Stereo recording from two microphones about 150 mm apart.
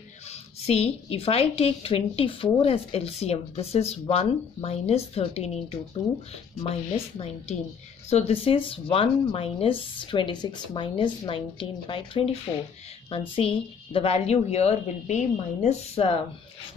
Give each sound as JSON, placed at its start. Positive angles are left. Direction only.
{"t": 0.3, "sound": "a woman's voice", "side_deg": 45}
{"t": 13.4, "sound": "a woman's voice", "side_deg": 40}